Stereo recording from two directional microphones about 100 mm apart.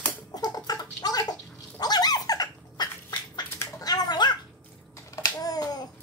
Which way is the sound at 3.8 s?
40° left (ahead or behind).